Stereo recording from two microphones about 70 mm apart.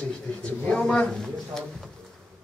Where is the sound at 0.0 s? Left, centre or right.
Centre.